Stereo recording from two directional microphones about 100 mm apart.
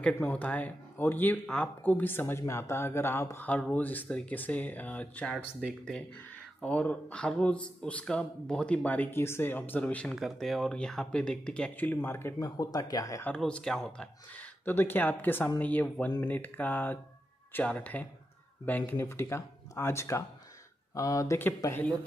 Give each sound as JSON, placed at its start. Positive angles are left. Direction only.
{"t": 0.2, "sound": "speech", "side_deg": 15}
{"t": 1.4, "sound": "speech", "side_deg": 10}
{"t": 6.6, "sound": "speech", "side_deg": 15}
{"t": 10.1, "sound": "speech", "side_deg": 0}
{"t": 12.4, "sound": "speech", "side_deg": 40}
{"t": 13.4, "sound": "speech", "side_deg": 10}
{"t": 14.6, "sound": "speech", "side_deg": 20}